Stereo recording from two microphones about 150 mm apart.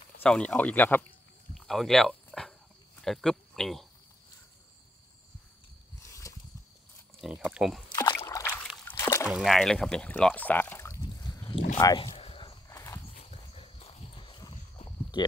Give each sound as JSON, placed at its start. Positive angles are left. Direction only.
{"t": 0.2, "sound": "speech", "side_deg": 5}
{"t": 1.5, "sound": "dog", "side_deg": 0}
{"t": 3.0, "sound": "speech", "side_deg": 0}
{"t": 6.0, "sound": "a sound", "side_deg": 20}
{"t": 7.2, "sound": "speech", "side_deg": -5}
{"t": 7.9, "sound": "a sound", "side_deg": 25}
{"t": 9.3, "sound": "speech", "side_deg": 0}
{"t": 12.2, "sound": "walk", "side_deg": 40}
{"t": 12.6, "sound": "horse", "side_deg": 20}
{"t": 13.5, "sound": "horse", "side_deg": 40}
{"t": 14.9, "sound": "a sound", "side_deg": 30}